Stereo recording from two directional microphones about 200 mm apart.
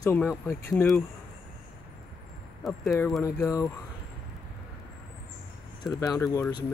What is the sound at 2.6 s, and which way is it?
Speech, centre (ahead or behind).